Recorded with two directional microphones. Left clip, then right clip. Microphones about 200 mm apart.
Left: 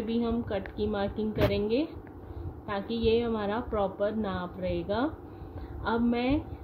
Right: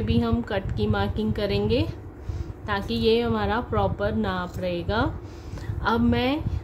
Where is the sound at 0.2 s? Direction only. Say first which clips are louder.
Right 5 dB; 35° right (ahead or behind).